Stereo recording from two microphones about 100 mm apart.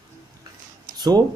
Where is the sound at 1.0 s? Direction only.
40° right (ahead or behind).